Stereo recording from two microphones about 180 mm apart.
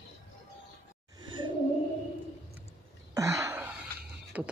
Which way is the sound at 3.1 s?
15° right (ahead or behind).